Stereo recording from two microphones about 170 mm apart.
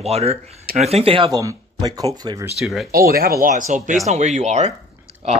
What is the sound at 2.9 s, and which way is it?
Speech, 60° right (ahead or behind).